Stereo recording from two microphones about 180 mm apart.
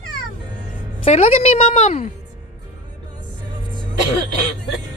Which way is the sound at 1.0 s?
35° left (ahead or behind).